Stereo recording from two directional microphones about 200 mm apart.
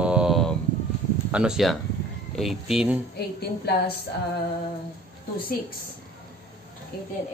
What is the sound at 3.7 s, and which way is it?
Music, 55° left (ahead or behind).